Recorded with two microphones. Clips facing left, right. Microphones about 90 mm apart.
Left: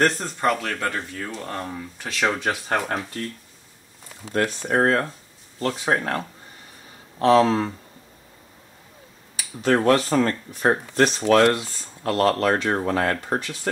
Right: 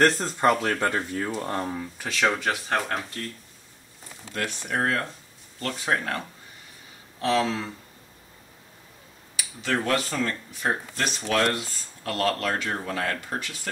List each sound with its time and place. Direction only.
0.0 s speech: centre (ahead or behind)
4.3 s speech: 35° left (ahead or behind)
7.2 s speech: 45° left (ahead or behind)
9.4 s speech: 40° left (ahead or behind)